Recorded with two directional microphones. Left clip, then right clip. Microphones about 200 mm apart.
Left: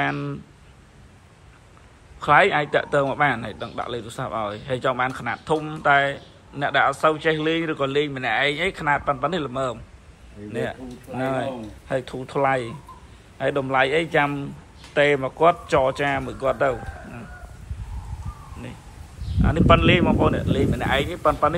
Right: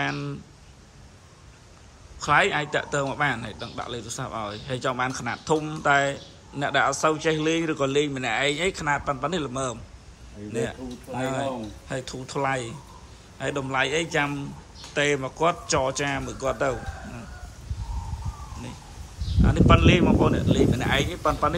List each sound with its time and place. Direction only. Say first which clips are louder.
0.0 s a man's voice: left 4 dB; 10° right (ahead or behind)
2.2 s a man's voice: left 4 dB; 10° right (ahead or behind)
19.4 s a man's voice: left 3 dB; 15° right (ahead or behind)